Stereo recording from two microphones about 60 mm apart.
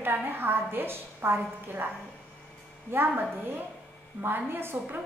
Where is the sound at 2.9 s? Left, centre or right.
Right.